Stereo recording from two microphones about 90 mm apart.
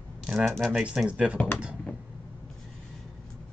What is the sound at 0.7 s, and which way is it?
Speech, 10° right (ahead or behind).